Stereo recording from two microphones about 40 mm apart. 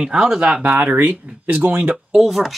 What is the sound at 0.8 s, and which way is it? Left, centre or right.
Speech, right.